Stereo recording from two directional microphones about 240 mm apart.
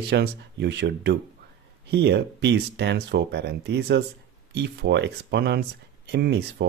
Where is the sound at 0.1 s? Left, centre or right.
Right.